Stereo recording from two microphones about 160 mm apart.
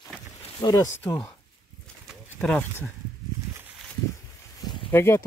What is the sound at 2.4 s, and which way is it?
Speech, 10° left (ahead or behind).